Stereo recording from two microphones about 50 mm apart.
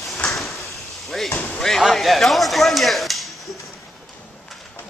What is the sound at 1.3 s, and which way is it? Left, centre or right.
Slam, left.